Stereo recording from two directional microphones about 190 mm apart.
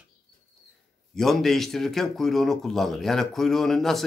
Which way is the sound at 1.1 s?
Centre (ahead or behind).